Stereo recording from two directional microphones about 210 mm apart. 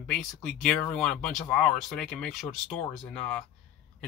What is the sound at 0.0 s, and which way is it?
Speech, 5° left (ahead or behind).